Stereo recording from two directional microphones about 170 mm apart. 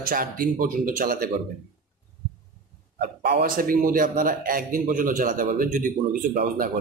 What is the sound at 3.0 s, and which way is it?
Speech, 60° right (ahead or behind).